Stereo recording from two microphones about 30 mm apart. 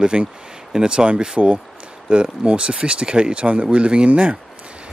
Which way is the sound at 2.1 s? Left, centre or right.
Right.